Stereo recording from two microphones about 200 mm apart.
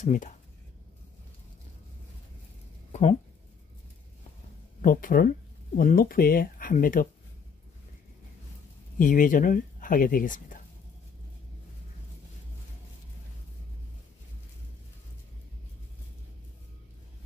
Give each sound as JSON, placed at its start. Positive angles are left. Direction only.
{"t": 0.0, "sound": "speech", "side_deg": 40}
{"t": 2.9, "sound": "a sound", "side_deg": 30}
{"t": 4.8, "sound": "speech", "side_deg": 45}
{"t": 8.9, "sound": "speech", "side_deg": 40}